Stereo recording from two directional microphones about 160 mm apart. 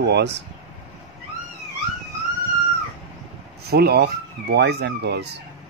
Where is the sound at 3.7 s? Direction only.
85° right.